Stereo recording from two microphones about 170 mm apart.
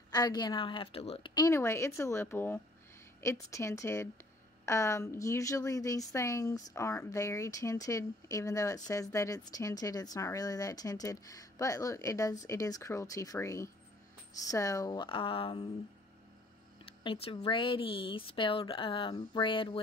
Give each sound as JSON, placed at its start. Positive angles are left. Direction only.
{"t": 0.1, "sound": "a woman's voice", "side_deg": 25}
{"t": 17.0, "sound": "speech", "side_deg": 30}